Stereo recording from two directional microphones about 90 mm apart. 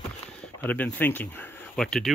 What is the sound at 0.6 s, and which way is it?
Speech, 20° left (ahead or behind).